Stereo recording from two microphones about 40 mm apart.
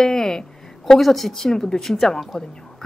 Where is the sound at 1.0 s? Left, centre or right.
Centre.